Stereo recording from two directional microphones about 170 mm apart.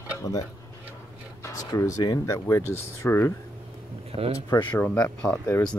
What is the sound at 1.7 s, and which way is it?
Speech, 20° left (ahead or behind).